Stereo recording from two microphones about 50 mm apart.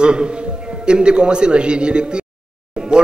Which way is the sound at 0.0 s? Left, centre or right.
Centre.